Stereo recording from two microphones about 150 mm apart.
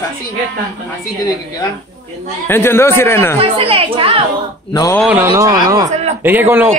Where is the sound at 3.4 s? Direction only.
40° right (ahead or behind).